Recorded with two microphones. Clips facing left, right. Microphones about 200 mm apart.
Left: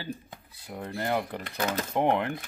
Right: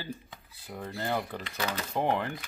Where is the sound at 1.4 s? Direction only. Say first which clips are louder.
Left 4 dB; 50° left (ahead or behind).